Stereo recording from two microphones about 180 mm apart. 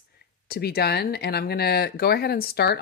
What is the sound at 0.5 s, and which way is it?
Speech, 60° left (ahead or behind).